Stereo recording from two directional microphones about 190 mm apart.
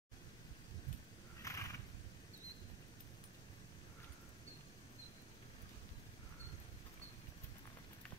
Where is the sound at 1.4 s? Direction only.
15° left (ahead or behind).